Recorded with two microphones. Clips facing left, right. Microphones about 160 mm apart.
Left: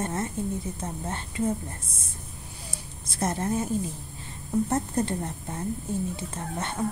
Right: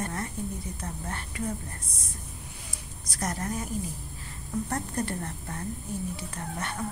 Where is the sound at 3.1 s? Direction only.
25° left (ahead or behind).